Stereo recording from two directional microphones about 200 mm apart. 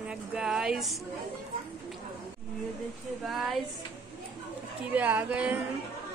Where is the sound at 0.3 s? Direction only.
5° right (ahead or behind).